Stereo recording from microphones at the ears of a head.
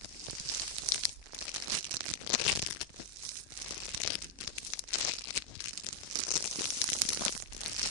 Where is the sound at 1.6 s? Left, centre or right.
Right.